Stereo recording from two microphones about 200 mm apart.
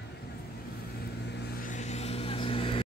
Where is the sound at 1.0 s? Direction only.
55° left (ahead or behind); by 2.8 s 25° left (ahead or behind).